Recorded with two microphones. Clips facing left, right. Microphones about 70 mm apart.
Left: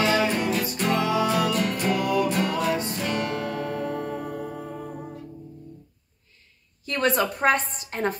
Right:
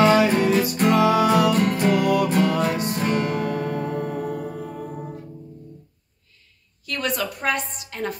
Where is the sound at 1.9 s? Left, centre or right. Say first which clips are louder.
Right 4 dB; right.